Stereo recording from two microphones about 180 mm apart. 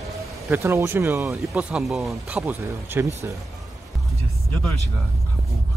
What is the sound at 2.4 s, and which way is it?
Speech, 10° right (ahead or behind).